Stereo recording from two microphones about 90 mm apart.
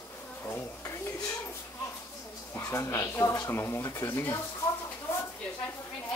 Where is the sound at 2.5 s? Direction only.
30° left (ahead or behind).